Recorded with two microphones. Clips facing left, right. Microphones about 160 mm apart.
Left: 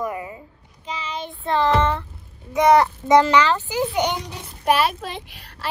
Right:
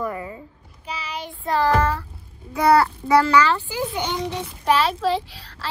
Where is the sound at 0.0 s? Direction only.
15° left (ahead or behind).